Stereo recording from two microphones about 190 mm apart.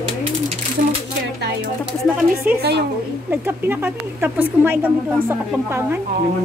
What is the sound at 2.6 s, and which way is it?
Speech, 60° right (ahead or behind).